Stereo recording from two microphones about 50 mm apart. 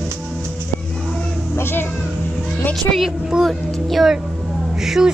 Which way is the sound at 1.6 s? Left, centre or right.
Left.